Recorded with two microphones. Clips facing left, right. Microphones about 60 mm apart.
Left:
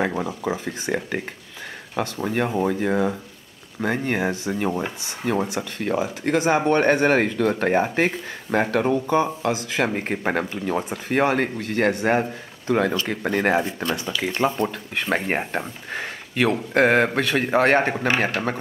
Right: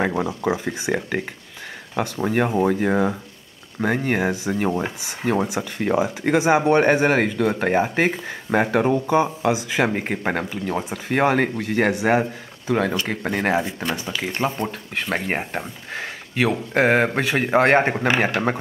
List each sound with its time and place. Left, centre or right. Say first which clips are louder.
0.0 s speech: right 2 dB; centre
5.2 s speech: right 2 dB; centre
10.0 s speech: even; centre
11.2 s speech: right 2 dB; centre
14.4 s speech: left 2 dB; centre
15.0 s speech: left 1 dB; centre; by 18.6 s right